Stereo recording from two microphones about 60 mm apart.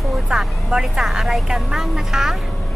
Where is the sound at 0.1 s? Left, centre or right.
Centre.